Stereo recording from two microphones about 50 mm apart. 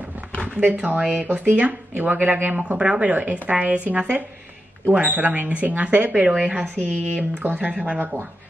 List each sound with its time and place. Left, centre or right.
0.6 s speech: right
2.8 s speech: right